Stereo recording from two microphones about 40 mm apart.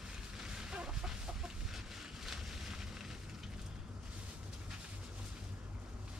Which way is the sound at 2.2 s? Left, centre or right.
Centre.